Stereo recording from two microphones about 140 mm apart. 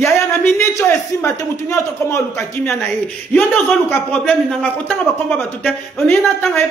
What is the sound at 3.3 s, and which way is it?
A man's voice, 10° left (ahead or behind).